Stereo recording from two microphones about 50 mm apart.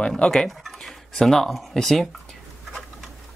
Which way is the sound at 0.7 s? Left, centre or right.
Centre.